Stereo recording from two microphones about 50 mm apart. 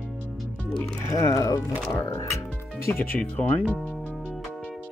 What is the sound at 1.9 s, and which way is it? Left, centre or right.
Music, left.